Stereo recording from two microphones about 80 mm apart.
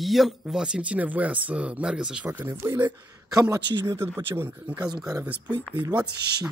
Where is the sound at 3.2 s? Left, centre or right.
Right.